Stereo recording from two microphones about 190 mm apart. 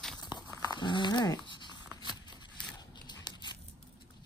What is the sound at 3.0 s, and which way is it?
Dog, 20° left (ahead or behind).